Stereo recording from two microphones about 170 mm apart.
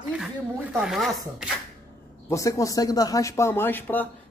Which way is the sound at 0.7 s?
Centre (ahead or behind).